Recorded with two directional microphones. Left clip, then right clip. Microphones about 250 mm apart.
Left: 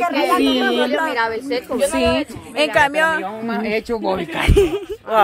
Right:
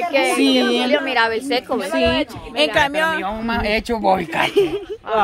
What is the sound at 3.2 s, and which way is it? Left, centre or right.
Speech, right.